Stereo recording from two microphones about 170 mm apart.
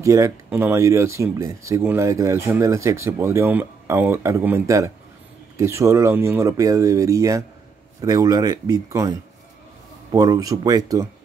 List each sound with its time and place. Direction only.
0.0 s speech: 20° right (ahead or behind)
10.1 s speech: 20° right (ahead or behind)